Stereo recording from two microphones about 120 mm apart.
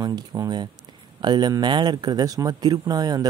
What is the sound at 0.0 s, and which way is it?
Speech, 35° right (ahead or behind).